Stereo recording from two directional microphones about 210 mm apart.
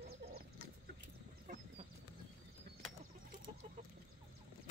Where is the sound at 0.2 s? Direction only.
55° right (ahead or behind).